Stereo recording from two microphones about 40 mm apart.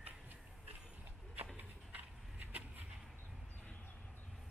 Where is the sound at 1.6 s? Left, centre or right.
Right.